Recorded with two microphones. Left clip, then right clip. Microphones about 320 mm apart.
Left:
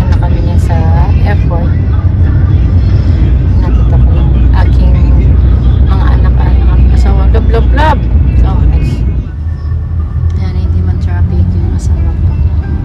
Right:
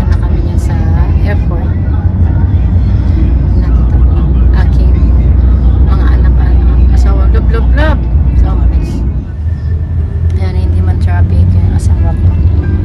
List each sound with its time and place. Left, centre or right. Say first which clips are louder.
7.5 s vehicle: left 5 dB; centre